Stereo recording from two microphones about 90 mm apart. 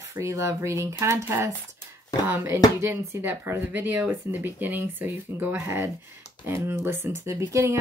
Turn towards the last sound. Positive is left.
turn(degrees=-35)  # may be behind; listen again after turning